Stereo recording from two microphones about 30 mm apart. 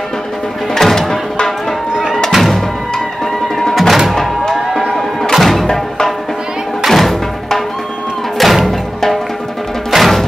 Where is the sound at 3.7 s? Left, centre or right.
Centre.